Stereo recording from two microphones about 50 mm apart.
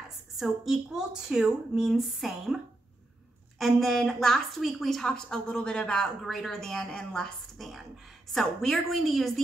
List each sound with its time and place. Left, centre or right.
0.4 s a woman's voice: centre
4.6 s a woman's voice: centre
5.0 s a woman's voice: centre
6.2 s a woman's voice: centre
7.5 s a woman's voice: centre